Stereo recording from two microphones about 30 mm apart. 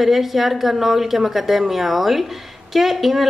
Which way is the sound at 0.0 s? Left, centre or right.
Centre.